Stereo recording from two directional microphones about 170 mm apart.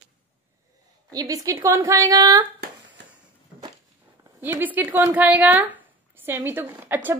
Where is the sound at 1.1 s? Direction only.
20° right (ahead or behind).